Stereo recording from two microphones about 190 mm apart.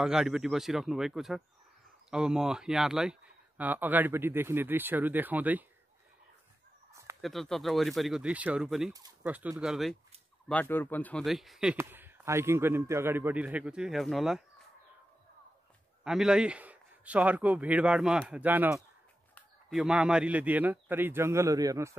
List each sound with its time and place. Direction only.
0.0 s speech: 5° right (ahead or behind)
6.9 s chicken: 15° right (ahead or behind)
7.2 s speech: centre (ahead or behind)
10.5 s speech: 10° left (ahead or behind)
11.7 s speech: 10° right (ahead or behind)
16.0 s speech: 5° right (ahead or behind)